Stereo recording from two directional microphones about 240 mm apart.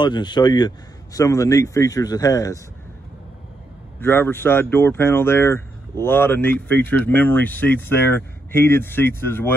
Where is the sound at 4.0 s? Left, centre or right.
Centre.